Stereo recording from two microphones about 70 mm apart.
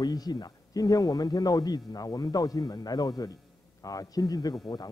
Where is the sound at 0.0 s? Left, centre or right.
Left.